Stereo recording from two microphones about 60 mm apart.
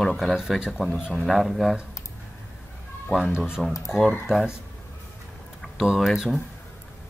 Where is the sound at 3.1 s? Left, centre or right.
Centre.